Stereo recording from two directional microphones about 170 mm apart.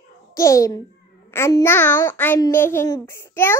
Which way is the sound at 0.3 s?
20° left (ahead or behind).